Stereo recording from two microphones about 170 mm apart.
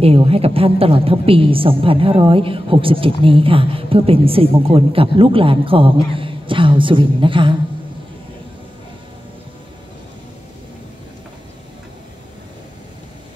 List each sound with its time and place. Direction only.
0.0 s a woman's voice: 35° right (ahead or behind)